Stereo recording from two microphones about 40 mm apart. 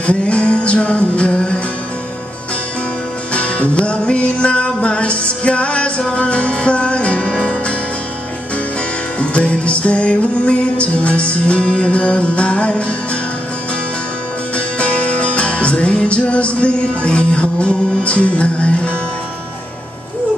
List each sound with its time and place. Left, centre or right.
0.0 s music: left
3.3 s music: left
9.2 s music: left
14.8 s music: left